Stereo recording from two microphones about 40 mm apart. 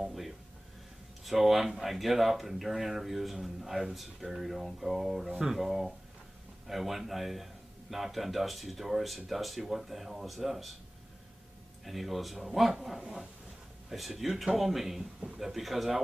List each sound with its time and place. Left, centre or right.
1.2 s speech: centre
11.8 s speech: centre